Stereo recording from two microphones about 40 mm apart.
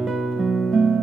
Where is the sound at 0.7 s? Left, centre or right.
Centre.